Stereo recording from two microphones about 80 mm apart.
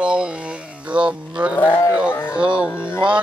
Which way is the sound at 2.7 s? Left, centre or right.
Left.